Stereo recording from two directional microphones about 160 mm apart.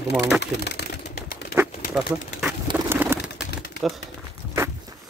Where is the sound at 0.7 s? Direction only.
90° left.